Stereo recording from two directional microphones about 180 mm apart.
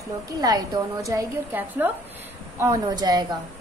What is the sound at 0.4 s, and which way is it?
A woman's voice, 20° right (ahead or behind).